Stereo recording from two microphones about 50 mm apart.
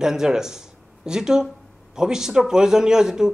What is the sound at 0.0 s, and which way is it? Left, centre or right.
Speech, centre.